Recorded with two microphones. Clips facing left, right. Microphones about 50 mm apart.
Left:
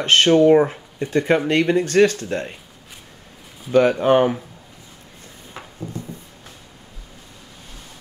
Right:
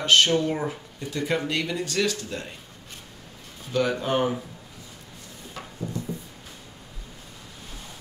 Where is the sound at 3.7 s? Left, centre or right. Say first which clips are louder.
Left 9 dB; left.